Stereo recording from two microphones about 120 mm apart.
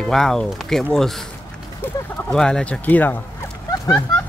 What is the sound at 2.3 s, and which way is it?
Speech, 5° left (ahead or behind).